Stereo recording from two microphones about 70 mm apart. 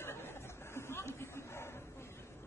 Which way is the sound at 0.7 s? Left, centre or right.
Left.